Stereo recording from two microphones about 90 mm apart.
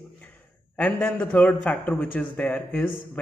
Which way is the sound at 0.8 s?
15° left (ahead or behind).